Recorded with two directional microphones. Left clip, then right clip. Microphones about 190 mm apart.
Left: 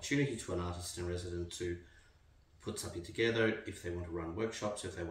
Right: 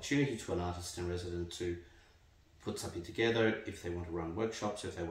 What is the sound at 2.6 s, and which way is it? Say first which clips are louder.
Speech: right 2 dB; 15° right (ahead or behind).